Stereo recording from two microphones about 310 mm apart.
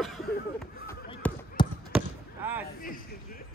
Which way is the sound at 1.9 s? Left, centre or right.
Centre.